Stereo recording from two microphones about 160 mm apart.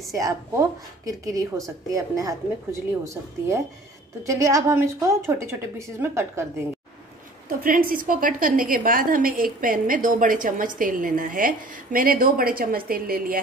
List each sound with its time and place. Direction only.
0.1 s a woman's voice: 20° right (ahead or behind)
7.4 s a woman's voice: 60° right (ahead or behind)